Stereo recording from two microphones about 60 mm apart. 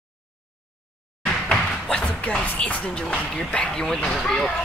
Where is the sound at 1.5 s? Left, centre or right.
Centre.